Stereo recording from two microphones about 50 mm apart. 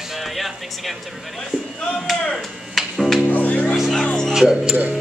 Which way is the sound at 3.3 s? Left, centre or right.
Left.